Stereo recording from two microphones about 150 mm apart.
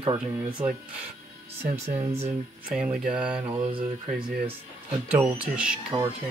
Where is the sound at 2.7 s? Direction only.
5° right (ahead or behind).